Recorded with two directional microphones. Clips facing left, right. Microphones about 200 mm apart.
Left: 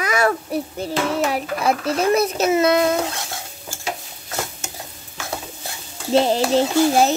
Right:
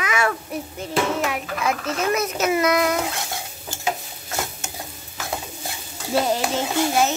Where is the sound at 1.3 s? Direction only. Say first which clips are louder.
Left 4 dB; 35° left (ahead or behind).